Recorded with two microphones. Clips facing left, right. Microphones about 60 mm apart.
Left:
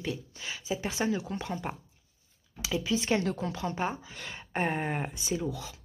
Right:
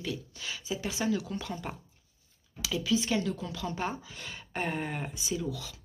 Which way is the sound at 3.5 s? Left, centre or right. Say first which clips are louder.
Left 2 dB; left.